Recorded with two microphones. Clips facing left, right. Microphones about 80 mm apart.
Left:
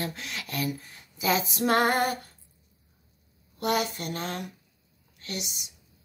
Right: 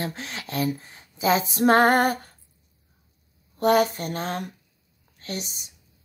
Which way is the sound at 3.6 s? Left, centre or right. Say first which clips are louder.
Right 8 dB; right.